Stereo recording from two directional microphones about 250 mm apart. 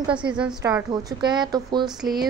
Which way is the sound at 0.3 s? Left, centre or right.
Centre.